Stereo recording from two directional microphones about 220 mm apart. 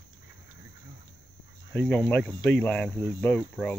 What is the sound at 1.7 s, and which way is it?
Speech, 5° left (ahead or behind).